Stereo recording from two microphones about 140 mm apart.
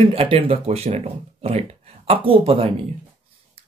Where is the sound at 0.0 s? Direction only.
40° right (ahead or behind).